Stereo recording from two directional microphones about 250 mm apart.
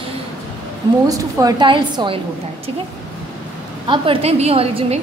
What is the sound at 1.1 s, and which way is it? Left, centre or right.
A woman's voice, centre.